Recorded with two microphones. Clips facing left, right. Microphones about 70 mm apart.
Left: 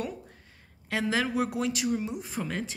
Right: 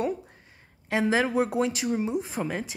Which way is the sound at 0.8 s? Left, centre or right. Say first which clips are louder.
Right 4 dB; right.